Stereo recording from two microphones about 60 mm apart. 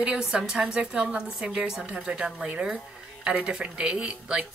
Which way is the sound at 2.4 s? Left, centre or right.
Right.